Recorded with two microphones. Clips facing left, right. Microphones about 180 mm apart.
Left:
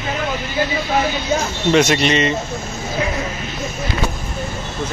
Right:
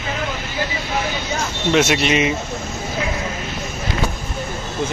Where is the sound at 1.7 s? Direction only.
5° right (ahead or behind).